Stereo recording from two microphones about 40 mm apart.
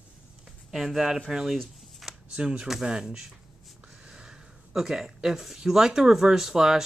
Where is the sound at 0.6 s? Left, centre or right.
Centre.